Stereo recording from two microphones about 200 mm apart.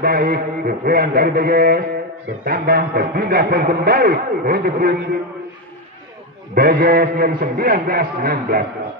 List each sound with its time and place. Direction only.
0.0 s a man's voice: 50° right (ahead or behind)
6.5 s a man's voice: 50° right (ahead or behind)